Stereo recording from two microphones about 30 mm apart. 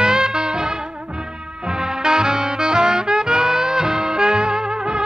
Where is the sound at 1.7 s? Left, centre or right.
Right.